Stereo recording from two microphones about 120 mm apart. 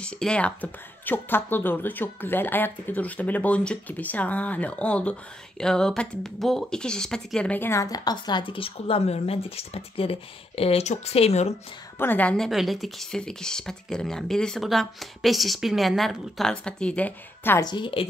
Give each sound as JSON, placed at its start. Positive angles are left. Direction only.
{"t": 0.0, "sound": "speech", "side_deg": 10}
{"t": 12.0, "sound": "speech", "side_deg": 15}
{"t": 12.4, "sound": "speech", "side_deg": 0}
{"t": 17.6, "sound": "speech", "side_deg": 40}